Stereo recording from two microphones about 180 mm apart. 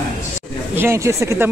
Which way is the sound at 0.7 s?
15° right (ahead or behind).